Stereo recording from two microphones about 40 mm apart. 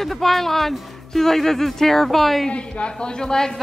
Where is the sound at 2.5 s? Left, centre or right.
Left.